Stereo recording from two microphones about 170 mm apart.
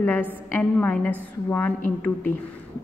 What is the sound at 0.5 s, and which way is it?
A woman's voice, 10° left (ahead or behind).